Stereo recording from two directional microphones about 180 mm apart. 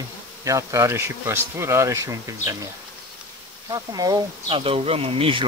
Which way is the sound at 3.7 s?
20° right (ahead or behind).